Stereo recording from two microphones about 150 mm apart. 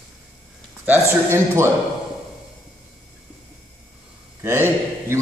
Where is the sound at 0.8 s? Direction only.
15° right (ahead or behind).